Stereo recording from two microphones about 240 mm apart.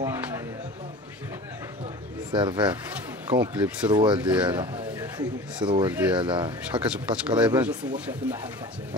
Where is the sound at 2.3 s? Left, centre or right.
Centre.